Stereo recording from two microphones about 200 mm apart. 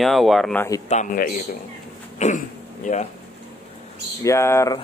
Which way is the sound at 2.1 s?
40° left (ahead or behind).